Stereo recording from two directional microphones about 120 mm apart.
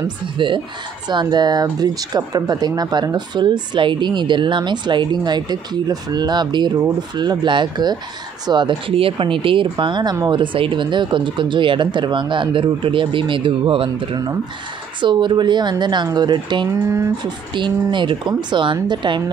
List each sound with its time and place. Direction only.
0.4 s speech: 45° right (ahead or behind)
16.8 s speech: 25° right (ahead or behind)
17.2 s speech: 40° right (ahead or behind)